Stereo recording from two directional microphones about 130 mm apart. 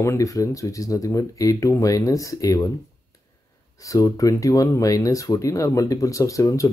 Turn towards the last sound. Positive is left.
turn(degrees=25)  # may be behind; listen again after turning